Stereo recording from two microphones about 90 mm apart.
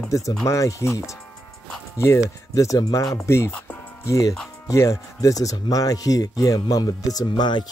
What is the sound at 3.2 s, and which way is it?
Speech, 30° left (ahead or behind).